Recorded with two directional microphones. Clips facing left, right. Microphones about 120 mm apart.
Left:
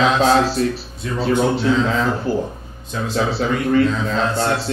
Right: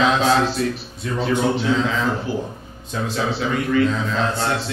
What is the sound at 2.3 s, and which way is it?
Speech, 40° left (ahead or behind).